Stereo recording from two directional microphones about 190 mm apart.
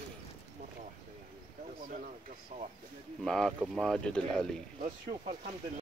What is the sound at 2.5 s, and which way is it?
Speech, 40° right (ahead or behind).